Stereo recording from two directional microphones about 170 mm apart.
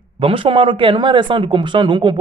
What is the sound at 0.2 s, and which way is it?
Speech, 30° right (ahead or behind).